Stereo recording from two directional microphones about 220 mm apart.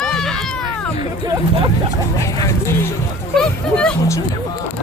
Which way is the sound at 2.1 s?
15° left (ahead or behind).